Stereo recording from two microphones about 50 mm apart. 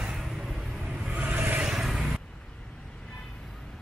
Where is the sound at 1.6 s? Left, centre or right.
Centre.